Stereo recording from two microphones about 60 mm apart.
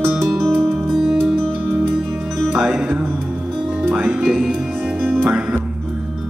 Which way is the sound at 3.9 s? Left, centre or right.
Right.